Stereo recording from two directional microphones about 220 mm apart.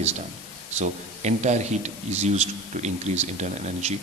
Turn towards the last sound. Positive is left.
turn(degrees=-30)  # may be behind; listen again after turning